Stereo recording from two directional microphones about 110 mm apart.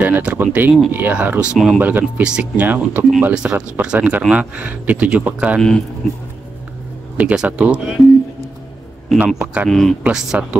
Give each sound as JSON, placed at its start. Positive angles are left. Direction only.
{"t": 0.0, "sound": "speech", "side_deg": -15}
{"t": 1.8, "sound": "speech", "side_deg": -15}
{"t": 7.2, "sound": "speech", "side_deg": -15}
{"t": 9.2, "sound": "speech", "side_deg": -10}
{"t": 9.7, "sound": "speech", "side_deg": 5}